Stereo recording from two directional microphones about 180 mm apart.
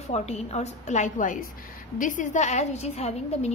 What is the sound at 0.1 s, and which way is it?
A woman's voice, 35° left (ahead or behind).